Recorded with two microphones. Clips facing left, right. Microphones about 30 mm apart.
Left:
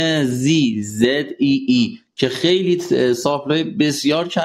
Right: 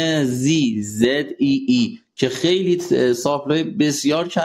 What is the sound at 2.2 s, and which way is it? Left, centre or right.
Speech, left.